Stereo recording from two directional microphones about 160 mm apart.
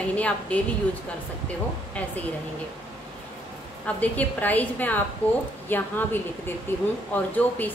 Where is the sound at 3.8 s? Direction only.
10° left (ahead or behind).